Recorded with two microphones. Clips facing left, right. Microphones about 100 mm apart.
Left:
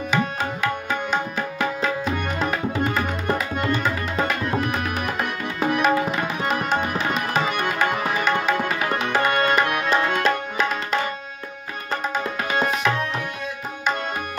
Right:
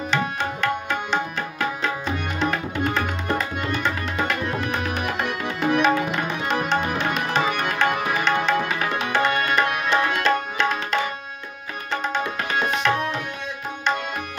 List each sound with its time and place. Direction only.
0.1 s music: 5° left (ahead or behind)
2.3 s tabla: 5° left (ahead or behind)
9.3 s music: 55° left (ahead or behind)
9.8 s tabla: 5° left (ahead or behind)